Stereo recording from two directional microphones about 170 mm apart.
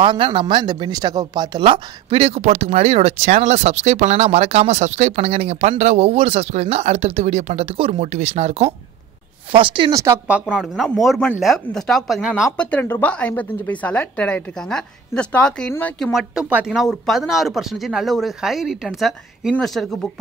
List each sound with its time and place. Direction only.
0.0 s speech: 30° right (ahead or behind); by 12.5 s 5° right (ahead or behind)
12.5 s speech: 10° left (ahead or behind)